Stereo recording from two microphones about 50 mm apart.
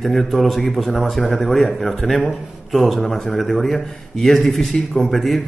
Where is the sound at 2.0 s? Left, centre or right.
Left.